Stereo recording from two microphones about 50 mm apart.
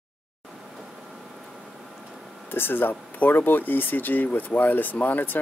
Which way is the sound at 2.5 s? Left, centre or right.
Left.